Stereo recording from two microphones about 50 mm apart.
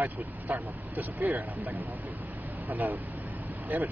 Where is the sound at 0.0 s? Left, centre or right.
Right.